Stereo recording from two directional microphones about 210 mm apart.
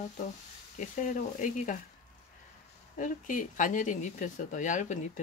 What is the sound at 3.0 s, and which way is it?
Speech, 40° left (ahead or behind).